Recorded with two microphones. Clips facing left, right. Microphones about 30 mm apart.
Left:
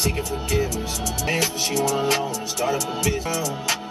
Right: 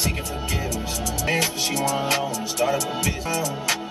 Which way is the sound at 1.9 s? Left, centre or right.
Centre.